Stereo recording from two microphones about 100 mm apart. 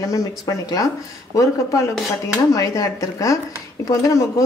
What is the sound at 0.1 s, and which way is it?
Speech, 35° left (ahead or behind).